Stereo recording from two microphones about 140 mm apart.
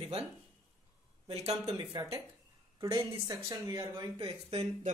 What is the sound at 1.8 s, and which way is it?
A woman's voice, 25° right (ahead or behind).